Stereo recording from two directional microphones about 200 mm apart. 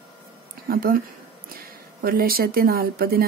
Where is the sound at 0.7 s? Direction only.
45° right (ahead or behind).